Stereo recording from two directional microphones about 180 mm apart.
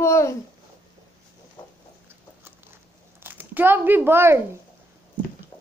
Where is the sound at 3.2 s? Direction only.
10° right (ahead or behind).